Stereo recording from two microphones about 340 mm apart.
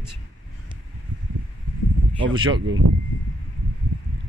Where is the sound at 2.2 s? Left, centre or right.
Centre.